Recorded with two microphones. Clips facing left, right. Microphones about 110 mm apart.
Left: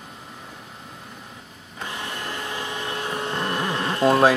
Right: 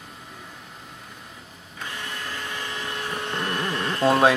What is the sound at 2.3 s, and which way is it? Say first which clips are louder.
Vacuum cleaner: left 3 dB; 20° left (ahead or behind).